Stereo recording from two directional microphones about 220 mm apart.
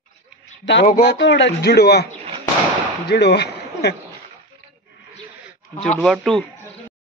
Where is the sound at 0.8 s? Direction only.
40° left (ahead or behind).